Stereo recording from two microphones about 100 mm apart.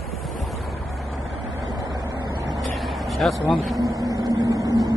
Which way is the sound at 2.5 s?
Centre (ahead or behind).